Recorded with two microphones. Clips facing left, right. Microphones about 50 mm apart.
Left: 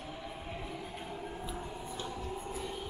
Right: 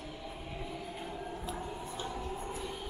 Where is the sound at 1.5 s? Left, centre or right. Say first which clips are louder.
Right 1 dB; centre.